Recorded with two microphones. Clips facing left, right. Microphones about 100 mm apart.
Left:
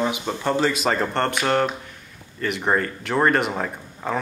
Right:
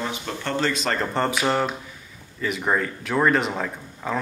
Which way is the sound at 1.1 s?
5° right (ahead or behind).